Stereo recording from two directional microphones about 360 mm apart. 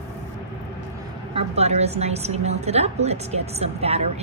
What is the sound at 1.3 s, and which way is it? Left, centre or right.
A woman's voice, centre.